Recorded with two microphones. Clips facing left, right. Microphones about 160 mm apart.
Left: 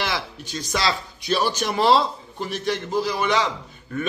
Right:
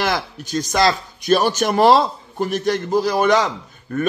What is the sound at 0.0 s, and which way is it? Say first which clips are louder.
Speech: right 6 dB; 45° right (ahead or behind).